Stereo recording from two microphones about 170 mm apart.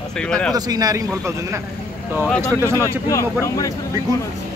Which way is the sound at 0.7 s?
20° right (ahead or behind).